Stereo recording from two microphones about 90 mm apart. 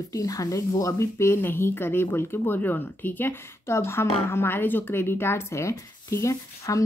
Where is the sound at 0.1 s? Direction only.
40° left (ahead or behind).